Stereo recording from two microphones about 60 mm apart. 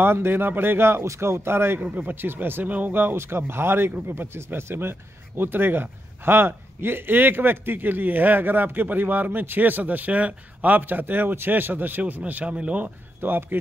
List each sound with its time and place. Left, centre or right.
0.0 s speech: right
13.2 s speech: right